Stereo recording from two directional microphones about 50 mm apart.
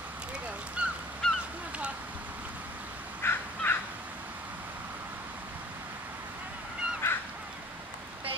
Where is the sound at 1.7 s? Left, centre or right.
Right.